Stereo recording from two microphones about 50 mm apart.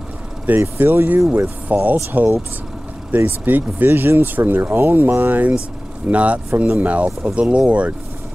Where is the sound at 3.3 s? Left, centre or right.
Right.